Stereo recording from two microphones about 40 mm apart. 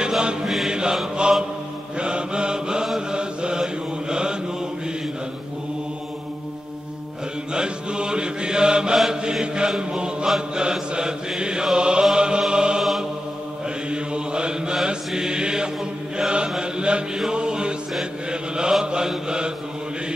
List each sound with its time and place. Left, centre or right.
0.2 s mantra: right
2.0 s mantra: right
7.5 s mantra: right
9.8 s chant: right
10.5 s mantra: centre
11.7 s chant: right
13.8 s mantra: right
17.3 s music: right
18.3 s mantra: centre